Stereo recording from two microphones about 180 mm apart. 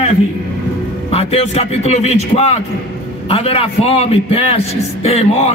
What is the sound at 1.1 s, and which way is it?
A man's voice, 35° left (ahead or behind).